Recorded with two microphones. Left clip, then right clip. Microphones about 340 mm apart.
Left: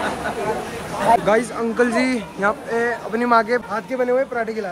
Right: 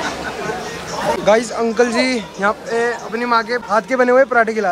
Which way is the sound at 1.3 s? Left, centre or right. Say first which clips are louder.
Right 4 dB; centre.